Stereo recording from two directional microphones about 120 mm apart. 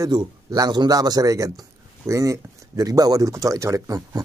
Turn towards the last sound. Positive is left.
turn(degrees=-30)  # may be behind; listen again after turning